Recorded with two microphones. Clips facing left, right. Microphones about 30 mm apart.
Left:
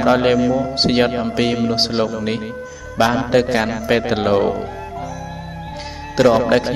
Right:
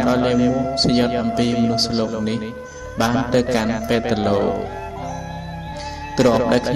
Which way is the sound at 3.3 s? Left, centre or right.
Centre.